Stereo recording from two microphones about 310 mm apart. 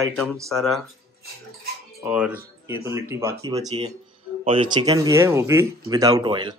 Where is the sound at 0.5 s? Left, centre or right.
Centre.